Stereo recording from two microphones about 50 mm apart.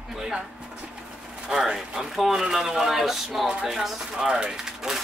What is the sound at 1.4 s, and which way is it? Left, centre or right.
Speech, centre.